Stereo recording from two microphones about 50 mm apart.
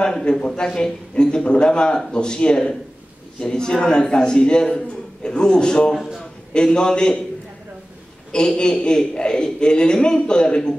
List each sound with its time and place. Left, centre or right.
0.0 s a man's voice: centre
8.3 s a man's voice: centre